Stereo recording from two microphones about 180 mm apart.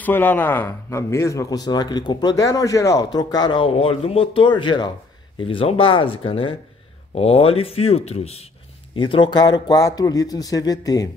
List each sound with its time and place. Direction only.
0.0 s a man's voice: 10° left (ahead or behind)